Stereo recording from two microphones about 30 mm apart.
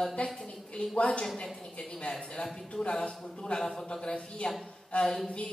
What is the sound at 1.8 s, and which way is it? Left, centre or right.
A woman's voice, left.